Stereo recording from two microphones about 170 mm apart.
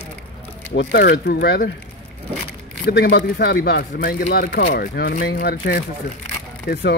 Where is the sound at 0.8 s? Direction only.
75° left (ahead or behind).